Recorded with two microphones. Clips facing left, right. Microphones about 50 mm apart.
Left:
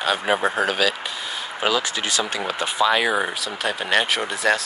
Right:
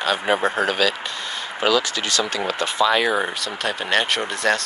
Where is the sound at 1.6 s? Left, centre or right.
Centre.